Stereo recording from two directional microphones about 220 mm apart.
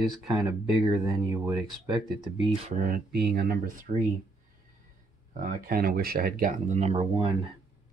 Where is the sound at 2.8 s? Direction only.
45° right (ahead or behind).